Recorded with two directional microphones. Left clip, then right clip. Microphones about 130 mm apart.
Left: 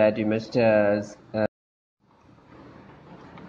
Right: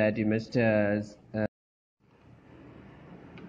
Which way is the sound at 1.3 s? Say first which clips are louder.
Left 7 dB; 15° left (ahead or behind).